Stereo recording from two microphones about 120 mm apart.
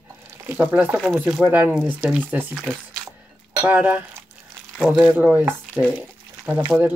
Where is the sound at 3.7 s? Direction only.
15° right (ahead or behind).